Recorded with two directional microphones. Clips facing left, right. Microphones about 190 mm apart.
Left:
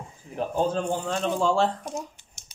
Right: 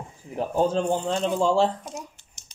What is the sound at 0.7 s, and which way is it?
Speech, 25° right (ahead or behind).